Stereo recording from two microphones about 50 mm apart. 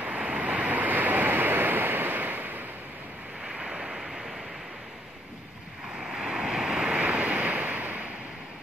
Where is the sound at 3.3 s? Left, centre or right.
Centre.